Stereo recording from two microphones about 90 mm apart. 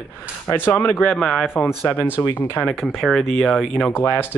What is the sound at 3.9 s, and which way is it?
Speech, 30° left (ahead or behind).